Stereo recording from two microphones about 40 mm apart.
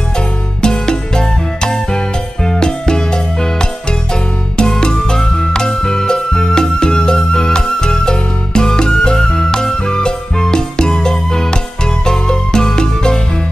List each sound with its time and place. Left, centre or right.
0.6 s music: centre